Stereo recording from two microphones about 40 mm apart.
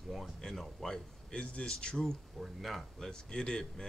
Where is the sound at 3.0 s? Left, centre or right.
Centre.